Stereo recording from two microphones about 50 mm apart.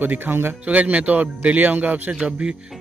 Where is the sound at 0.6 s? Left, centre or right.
Right.